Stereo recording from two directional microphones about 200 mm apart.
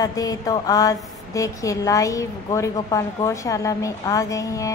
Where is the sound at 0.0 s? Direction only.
20° left (ahead or behind).